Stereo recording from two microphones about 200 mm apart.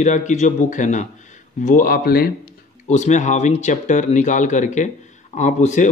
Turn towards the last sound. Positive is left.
turn(degrees=35)  # may be behind; listen again after turning